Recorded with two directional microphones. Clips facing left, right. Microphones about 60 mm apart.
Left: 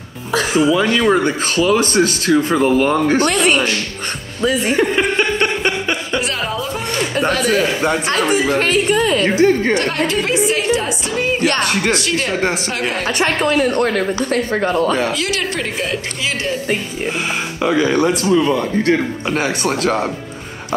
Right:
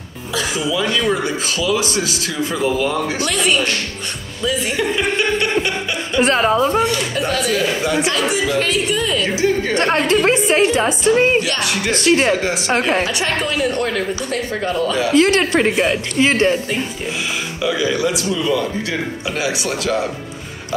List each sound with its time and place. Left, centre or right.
0.3 s speech: left
4.4 s a sound: left
6.2 s a woman's voice: right
6.9 s speech: left
9.8 s a woman's voice: right
11.4 s speech: left
12.0 s a woman's voice: right
13.0 s speech: left
15.1 s a woman's voice: right
17.6 s speech: left